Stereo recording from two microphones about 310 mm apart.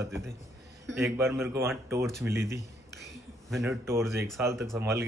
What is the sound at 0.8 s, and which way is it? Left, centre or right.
A man's voice, centre.